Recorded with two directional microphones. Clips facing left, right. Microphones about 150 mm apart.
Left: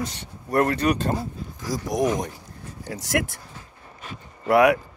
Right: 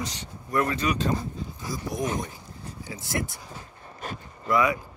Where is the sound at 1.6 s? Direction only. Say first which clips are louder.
Left 7 dB; 90° left.